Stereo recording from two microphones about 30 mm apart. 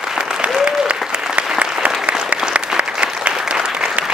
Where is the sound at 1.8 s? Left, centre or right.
Right.